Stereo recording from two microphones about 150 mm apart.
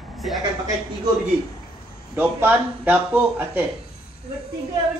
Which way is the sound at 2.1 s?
10° right (ahead or behind).